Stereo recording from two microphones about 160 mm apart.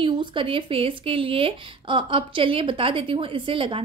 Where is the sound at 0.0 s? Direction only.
30° right (ahead or behind).